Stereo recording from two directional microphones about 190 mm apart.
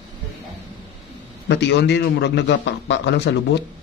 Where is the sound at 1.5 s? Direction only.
65° left (ahead or behind).